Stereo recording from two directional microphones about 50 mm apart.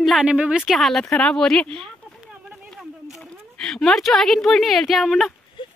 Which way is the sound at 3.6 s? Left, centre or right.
Centre.